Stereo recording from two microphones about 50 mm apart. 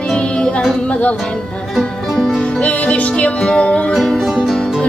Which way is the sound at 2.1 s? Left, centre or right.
Centre.